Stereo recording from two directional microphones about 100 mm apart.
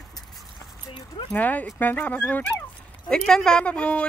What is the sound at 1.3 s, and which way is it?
A woman's voice, 15° left (ahead or behind).